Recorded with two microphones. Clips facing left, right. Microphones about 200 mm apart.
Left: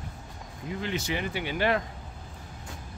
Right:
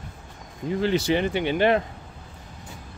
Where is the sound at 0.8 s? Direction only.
30° right (ahead or behind).